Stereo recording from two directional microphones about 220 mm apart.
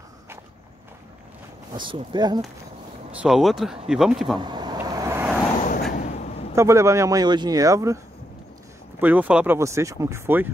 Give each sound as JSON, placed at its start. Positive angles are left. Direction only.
{"t": 1.7, "sound": "speech", "side_deg": -20}
{"t": 3.1, "sound": "speech", "side_deg": -5}
{"t": 4.4, "sound": "vehicle", "side_deg": -20}
{"t": 5.7, "sound": "a sound", "side_deg": 40}
{"t": 6.5, "sound": "speech", "side_deg": -15}
{"t": 9.0, "sound": "speech", "side_deg": -5}